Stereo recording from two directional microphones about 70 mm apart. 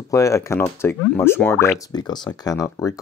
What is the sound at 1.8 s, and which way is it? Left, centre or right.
Speech, left.